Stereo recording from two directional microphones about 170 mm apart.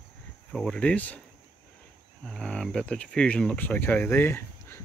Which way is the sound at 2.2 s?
5° left (ahead or behind).